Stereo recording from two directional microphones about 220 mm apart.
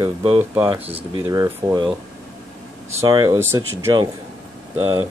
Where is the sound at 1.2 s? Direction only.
15° right (ahead or behind).